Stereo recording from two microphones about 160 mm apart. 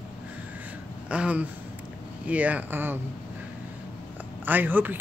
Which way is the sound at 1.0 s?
10° right (ahead or behind).